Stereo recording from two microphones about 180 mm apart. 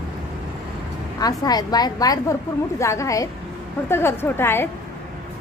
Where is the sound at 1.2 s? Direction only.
20° left (ahead or behind).